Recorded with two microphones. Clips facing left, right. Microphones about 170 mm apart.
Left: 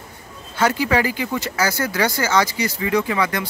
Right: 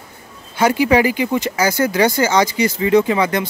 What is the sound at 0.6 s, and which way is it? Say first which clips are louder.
Speech: right 5 dB; 15° right (ahead or behind).